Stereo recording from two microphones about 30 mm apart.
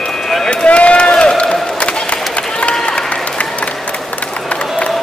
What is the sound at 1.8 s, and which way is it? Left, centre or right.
Crowd, left.